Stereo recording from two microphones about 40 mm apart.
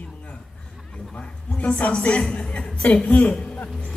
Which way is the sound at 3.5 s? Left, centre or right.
Left.